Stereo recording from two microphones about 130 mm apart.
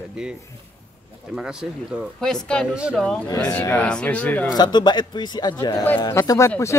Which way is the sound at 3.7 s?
10° left (ahead or behind).